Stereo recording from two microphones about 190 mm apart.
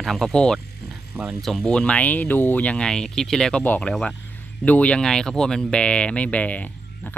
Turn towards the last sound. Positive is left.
turn(degrees=5)  # may be behind; listen again after turning